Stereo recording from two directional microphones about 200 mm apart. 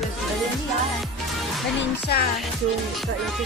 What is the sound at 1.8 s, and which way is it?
Music, 50° left (ahead or behind).